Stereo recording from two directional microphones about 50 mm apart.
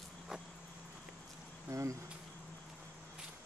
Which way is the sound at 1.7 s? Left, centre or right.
Right.